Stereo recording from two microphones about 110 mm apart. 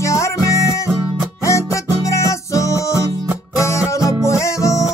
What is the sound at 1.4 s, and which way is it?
Music, 30° left (ahead or behind).